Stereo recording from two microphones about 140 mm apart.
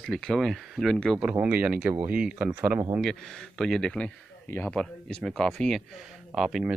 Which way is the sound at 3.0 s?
5° left (ahead or behind).